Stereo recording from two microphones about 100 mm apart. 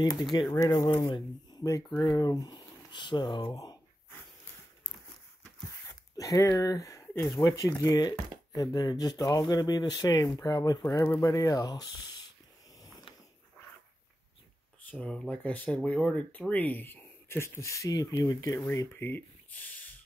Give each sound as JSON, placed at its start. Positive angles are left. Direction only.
{"t": 0.0, "sound": "speech", "side_deg": 45}
{"t": 6.1, "sound": "speech", "side_deg": 35}
{"t": 14.9, "sound": "speech", "side_deg": 10}
{"t": 18.6, "sound": "speech", "side_deg": 25}